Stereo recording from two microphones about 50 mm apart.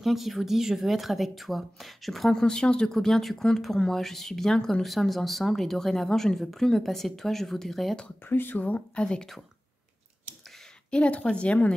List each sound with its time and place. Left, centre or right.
0.0 s speech: centre
2.4 s speech: centre
8.3 s speech: left; by 9.3 s centre
10.9 s speech: left